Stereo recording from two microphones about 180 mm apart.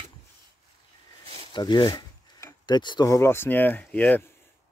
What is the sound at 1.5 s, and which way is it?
Speech, 25° left (ahead or behind).